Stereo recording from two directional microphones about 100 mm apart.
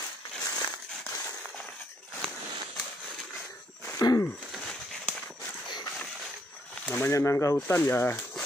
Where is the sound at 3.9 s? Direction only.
35° left (ahead or behind).